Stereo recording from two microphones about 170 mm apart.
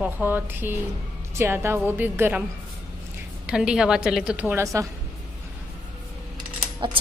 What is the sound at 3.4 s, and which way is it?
A woman's voice, 5° right (ahead or behind).